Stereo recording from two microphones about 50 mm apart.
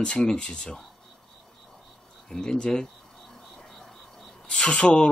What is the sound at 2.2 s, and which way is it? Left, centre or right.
Speech, centre.